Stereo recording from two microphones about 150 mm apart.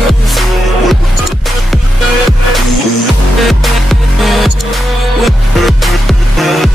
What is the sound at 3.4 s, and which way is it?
Music, centre (ahead or behind).